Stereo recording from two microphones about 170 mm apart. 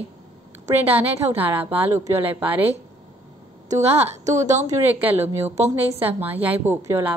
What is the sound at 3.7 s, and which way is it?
Speech, 40° right (ahead or behind).